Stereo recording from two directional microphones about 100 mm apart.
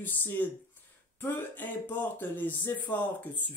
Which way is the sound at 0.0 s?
20° left (ahead or behind).